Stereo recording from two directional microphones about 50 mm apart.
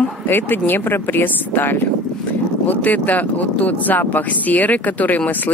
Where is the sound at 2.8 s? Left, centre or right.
Left.